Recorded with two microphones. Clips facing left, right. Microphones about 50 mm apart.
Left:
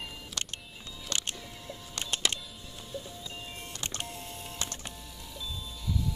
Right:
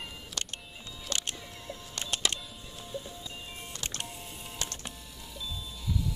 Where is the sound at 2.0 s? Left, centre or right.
Centre.